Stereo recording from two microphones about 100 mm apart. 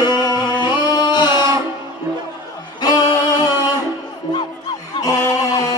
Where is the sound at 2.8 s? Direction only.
45° left (ahead or behind).